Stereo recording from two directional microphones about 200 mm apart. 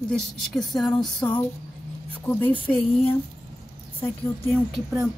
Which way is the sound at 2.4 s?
25° left (ahead or behind).